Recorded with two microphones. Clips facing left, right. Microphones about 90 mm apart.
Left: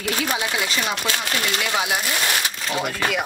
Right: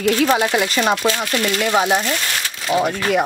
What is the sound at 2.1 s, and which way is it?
Speech, 15° left (ahead or behind).